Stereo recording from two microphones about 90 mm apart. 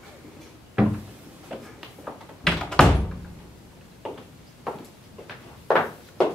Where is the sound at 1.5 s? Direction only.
10° right (ahead or behind).